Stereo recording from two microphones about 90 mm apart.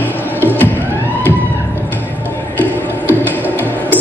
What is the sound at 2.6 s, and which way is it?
Music, 20° left (ahead or behind).